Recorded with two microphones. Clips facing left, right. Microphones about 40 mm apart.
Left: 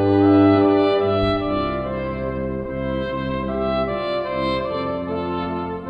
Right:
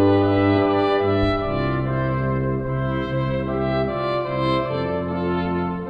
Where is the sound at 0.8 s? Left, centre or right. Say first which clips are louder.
Left 1 dB; left.